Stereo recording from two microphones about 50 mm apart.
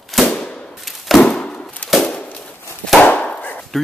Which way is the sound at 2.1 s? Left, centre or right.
Left.